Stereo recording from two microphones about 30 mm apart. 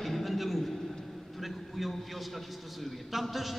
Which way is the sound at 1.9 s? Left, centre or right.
Centre.